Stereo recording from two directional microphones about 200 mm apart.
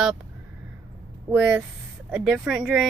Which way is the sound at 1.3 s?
5° right (ahead or behind).